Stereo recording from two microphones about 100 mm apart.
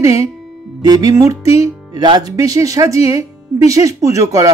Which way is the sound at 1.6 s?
40° right (ahead or behind).